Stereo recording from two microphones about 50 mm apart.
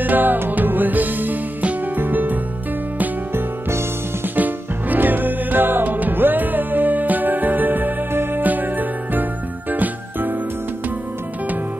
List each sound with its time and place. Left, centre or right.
0.0 s music: right
4.4 s music: right